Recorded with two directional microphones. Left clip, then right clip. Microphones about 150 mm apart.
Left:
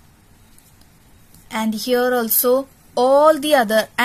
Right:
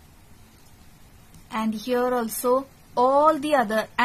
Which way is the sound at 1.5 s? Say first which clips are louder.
Left 6 dB; 30° left (ahead or behind).